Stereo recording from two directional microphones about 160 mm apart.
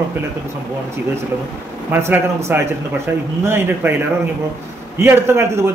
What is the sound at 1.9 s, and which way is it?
A man's voice, 15° right (ahead or behind).